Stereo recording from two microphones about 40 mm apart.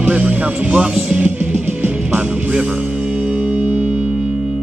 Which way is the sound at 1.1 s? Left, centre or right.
Right.